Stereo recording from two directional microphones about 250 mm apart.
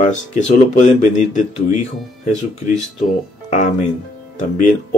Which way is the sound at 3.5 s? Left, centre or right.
Left.